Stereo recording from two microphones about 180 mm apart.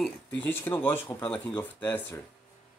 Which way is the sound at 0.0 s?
10° left (ahead or behind).